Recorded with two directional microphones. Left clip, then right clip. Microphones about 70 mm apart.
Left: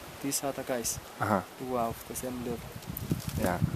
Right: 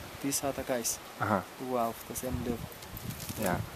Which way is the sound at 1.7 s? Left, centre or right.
Centre.